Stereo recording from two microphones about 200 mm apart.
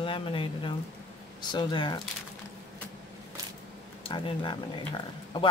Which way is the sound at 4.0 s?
25° left (ahead or behind).